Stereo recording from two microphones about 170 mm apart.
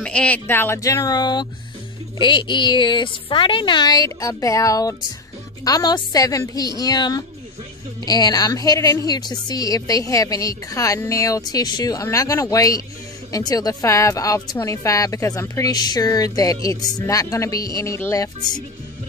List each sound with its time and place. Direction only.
0.0 s a woman's voice: 5° left (ahead or behind)